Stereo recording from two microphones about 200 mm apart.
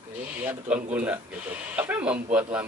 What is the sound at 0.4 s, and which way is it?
Speech, 10° right (ahead or behind).